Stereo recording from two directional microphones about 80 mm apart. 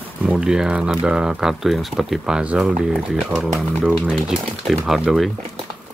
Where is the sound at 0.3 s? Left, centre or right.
Centre.